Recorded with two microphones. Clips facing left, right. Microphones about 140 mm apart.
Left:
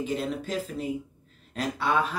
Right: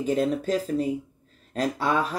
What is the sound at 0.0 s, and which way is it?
Speech, 40° right (ahead or behind).